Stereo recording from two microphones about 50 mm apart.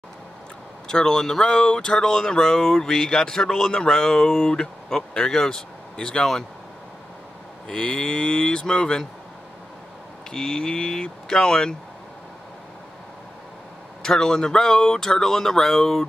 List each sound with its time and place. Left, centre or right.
0.8 s speech: centre
7.6 s speech: centre
10.3 s speech: centre
14.0 s speech: centre